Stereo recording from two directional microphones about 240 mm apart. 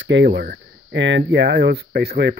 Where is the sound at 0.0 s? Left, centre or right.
Right.